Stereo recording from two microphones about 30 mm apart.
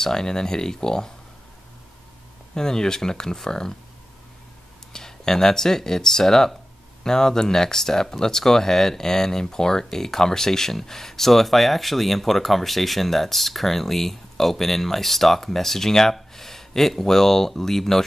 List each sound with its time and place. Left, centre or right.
0.0 s speech: left
2.5 s speech: left
4.9 s speech: centre